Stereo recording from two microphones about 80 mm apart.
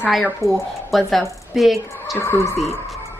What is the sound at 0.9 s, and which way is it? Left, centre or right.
Speech, centre.